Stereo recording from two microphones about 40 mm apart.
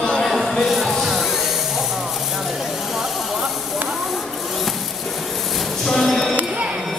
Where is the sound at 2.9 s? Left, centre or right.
Centre.